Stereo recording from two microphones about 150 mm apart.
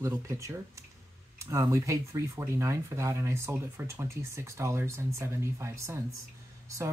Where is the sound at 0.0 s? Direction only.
20° right (ahead or behind).